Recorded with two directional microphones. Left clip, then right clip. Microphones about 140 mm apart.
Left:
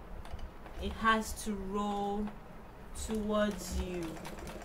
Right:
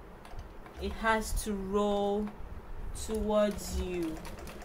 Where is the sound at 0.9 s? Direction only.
45° right (ahead or behind).